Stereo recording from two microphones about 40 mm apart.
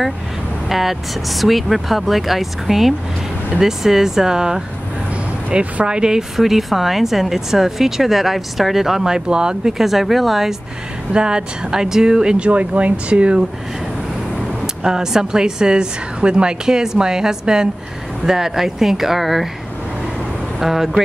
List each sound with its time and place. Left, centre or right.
0.7 s speech: centre
5.5 s speech: right
6.3 s speech: centre
9.8 s speech: centre
11.1 s speech: right
12.4 s speech: right
14.6 s speech: centre
20.6 s speech: centre